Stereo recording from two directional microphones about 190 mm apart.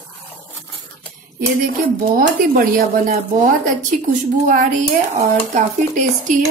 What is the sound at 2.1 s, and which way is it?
Speech, 50° right (ahead or behind).